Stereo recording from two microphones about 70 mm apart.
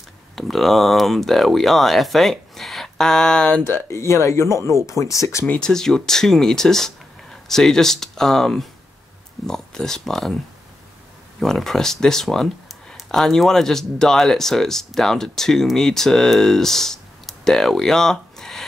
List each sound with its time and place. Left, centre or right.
0.4 s speech: centre
3.6 s speech: left
5.6 s speech: centre